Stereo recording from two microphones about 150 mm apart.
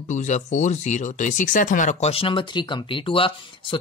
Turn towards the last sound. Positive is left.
turn(degrees=35)  # may be behind; listen again after turning